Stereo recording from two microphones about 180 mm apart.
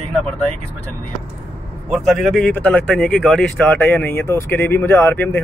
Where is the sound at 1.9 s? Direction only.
Centre (ahead or behind).